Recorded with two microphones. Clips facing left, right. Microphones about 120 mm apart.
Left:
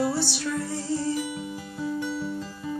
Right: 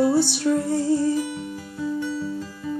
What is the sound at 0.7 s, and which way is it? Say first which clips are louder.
Music: right 8 dB; 50° right (ahead or behind).